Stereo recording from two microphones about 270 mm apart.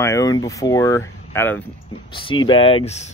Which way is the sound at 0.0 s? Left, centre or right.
Centre.